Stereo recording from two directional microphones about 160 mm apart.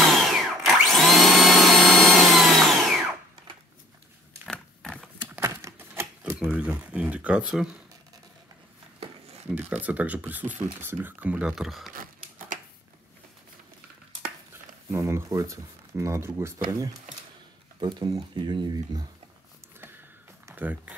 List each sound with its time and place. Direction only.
0.0 s vacuum cleaner: centre (ahead or behind)
4.5 s a sound: 5° left (ahead or behind)
5.3 s typewriter: 15° right (ahead or behind)
6.4 s speech: 5° right (ahead or behind)
9.5 s speech: 10° right (ahead or behind)
14.9 s speech: 15° right (ahead or behind)
20.4 s speech: 10° right (ahead or behind)